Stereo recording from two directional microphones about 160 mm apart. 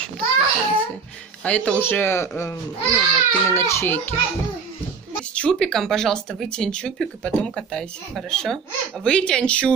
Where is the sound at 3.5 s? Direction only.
15° left (ahead or behind).